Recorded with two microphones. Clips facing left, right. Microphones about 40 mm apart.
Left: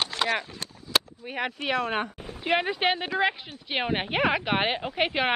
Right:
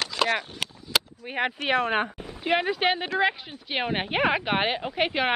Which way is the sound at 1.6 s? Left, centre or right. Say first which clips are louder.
Right 3 dB; right.